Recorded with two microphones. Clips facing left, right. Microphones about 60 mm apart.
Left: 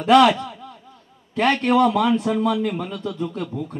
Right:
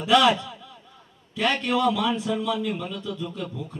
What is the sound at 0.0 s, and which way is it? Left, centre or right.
A man's voice, left.